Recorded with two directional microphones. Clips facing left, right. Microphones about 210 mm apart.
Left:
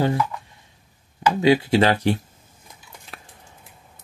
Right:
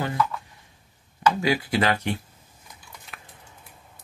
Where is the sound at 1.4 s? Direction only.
25° left (ahead or behind).